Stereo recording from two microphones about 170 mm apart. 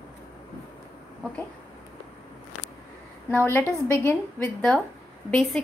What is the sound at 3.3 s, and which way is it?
A woman's voice, 10° left (ahead or behind).